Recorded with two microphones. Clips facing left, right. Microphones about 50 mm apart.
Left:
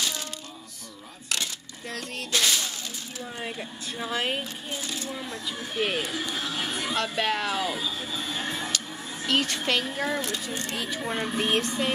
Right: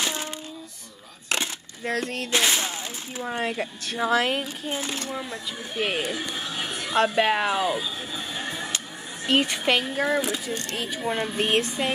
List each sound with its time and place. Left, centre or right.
0.0 s a sound: right
1.3 s a sound: right
3.3 s speech: right
4.6 s speech: right
5.1 s speech: centre
7.2 s neigh: centre
9.3 s speech: centre
10.5 s speech: centre
11.0 s speech: centre